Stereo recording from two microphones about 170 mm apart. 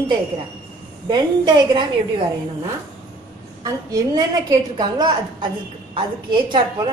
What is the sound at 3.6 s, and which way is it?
A woman's voice, 20° right (ahead or behind).